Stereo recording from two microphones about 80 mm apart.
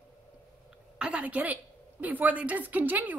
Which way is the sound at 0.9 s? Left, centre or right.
Centre.